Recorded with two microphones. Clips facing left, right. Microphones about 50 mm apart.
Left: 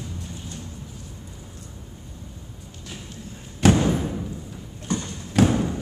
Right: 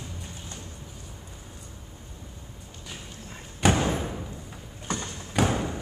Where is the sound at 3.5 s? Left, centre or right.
Centre.